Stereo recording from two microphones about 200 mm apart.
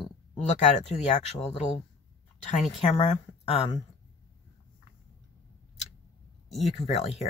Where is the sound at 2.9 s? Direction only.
30° left (ahead or behind).